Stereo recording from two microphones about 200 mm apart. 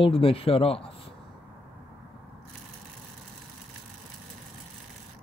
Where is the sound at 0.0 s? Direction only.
30° left (ahead or behind).